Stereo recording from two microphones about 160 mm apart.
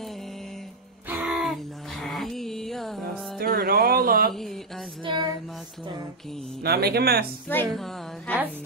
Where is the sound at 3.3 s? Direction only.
65° right (ahead or behind).